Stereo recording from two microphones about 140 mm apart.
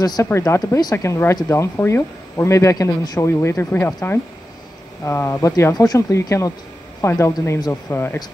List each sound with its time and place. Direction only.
0.0 s speech: 30° left (ahead or behind)